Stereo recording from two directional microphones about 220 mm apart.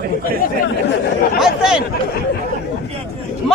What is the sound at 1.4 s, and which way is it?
Speech, 5° right (ahead or behind).